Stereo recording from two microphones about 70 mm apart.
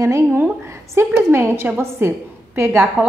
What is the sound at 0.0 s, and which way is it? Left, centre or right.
A woman's voice, right.